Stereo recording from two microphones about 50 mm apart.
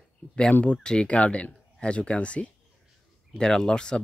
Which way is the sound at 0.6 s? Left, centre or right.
Left.